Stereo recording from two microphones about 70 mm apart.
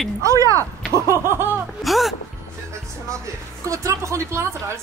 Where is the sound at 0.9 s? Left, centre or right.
Right.